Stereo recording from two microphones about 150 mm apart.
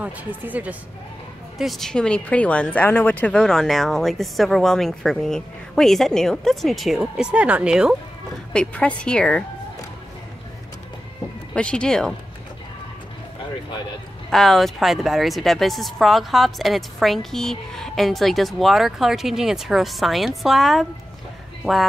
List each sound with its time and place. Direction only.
0.0 s speech: 10° right (ahead or behind)
1.6 s speech: centre (ahead or behind)
8.5 s speech: 10° left (ahead or behind)
11.5 s speech: 5° left (ahead or behind)
14.3 s speech: centre (ahead or behind)